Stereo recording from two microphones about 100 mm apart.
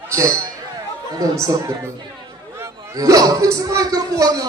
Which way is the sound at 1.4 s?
35° right (ahead or behind).